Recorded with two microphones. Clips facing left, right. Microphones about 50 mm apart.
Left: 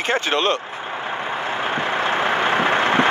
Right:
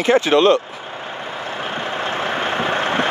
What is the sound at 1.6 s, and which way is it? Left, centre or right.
Vehicle, centre.